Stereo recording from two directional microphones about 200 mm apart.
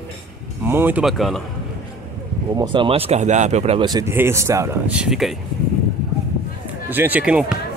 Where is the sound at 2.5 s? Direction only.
20° right (ahead or behind); by 5.4 s centre (ahead or behind).